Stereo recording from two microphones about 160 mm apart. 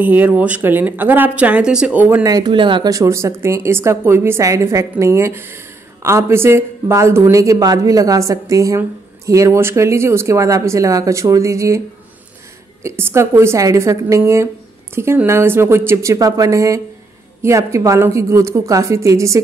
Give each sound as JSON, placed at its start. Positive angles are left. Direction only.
{"t": 0.0, "sound": "speech", "side_deg": -10}
{"t": 2.2, "sound": "a woman's voice", "side_deg": -25}
{"t": 12.8, "sound": "a woman's voice", "side_deg": -15}